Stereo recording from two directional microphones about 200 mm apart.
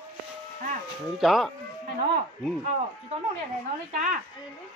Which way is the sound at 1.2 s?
Centre (ahead or behind).